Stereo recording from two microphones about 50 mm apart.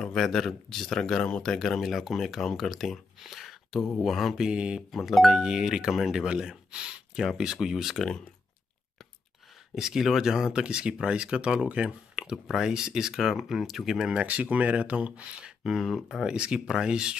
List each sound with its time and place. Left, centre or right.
0.0 s speech: centre
2.4 s speech: centre
3.3 s a sound: centre
4.0 s speech: centre
4.4 s speech: centre
4.9 s speech: centre
5.4 s speech: centre
6.2 s speech: centre
9.8 s speech: centre
14.2 s speech: right
15.6 s speech: centre
16.3 s speech: centre